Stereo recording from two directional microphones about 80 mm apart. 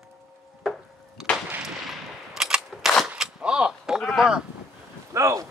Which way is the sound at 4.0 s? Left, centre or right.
Centre.